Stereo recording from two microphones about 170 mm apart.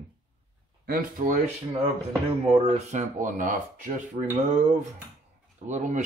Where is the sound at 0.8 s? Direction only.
55° right (ahead or behind).